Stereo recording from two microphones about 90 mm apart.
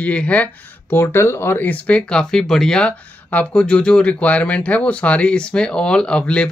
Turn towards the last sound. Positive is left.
turn(degrees=10)  # may be behind; listen again after turning